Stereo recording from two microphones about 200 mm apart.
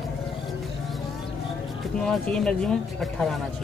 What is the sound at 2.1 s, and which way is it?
Speech, 5° left (ahead or behind).